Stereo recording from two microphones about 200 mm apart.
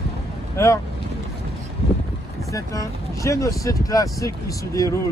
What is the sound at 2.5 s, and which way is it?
Speech, 15° left (ahead or behind).